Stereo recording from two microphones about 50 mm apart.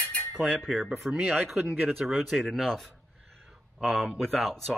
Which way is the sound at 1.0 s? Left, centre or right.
Centre.